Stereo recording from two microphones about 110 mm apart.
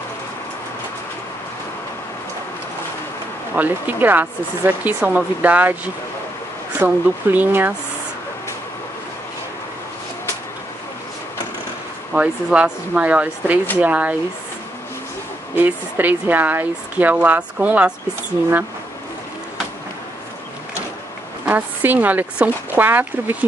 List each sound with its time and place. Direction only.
3.5 s speech: 15° right (ahead or behind)
6.8 s speech: 15° right (ahead or behind)
12.1 s speech: 10° right (ahead or behind)
15.5 s speech: 15° right (ahead or behind)
21.5 s speech: 15° right (ahead or behind)